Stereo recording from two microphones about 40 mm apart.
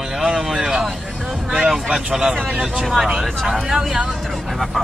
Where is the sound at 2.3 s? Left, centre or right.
Right.